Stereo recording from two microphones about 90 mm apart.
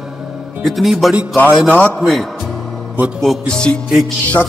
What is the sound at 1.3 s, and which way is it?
Music, 15° left (ahead or behind).